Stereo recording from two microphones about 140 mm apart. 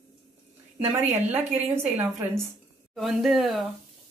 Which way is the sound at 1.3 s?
15° right (ahead or behind).